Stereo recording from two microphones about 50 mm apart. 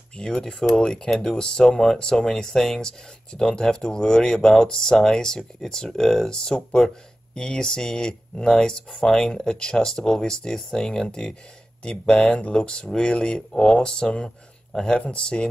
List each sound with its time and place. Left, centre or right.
0.2 s speech: centre